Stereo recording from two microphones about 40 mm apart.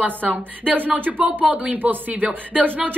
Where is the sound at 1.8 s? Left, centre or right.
Right.